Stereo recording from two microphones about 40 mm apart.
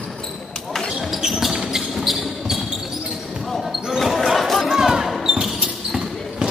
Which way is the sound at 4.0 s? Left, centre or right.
Centre.